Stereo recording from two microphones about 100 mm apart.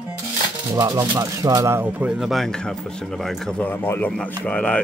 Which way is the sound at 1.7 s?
15° right (ahead or behind).